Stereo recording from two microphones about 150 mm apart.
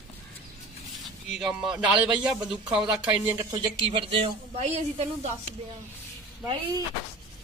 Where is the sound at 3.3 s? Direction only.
30° right (ahead or behind); by 5.3 s 45° right (ahead or behind).